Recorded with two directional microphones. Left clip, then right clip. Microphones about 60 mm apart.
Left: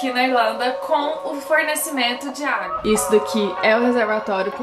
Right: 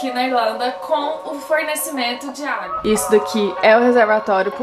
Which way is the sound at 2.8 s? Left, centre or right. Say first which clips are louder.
Right 2 dB; right.